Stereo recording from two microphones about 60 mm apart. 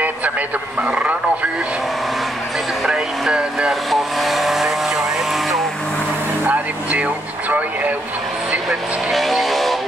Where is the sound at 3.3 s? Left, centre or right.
Centre.